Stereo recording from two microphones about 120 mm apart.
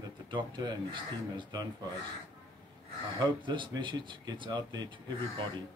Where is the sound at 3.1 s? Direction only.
40° right (ahead or behind).